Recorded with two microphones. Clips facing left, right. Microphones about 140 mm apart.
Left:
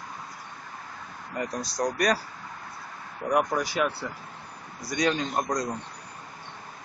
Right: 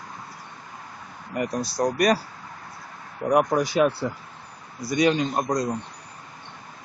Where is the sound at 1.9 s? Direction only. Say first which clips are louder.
Right 5 dB; 10° right (ahead or behind).